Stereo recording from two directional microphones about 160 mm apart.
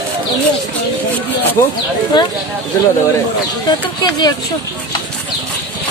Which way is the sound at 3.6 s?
25° left (ahead or behind).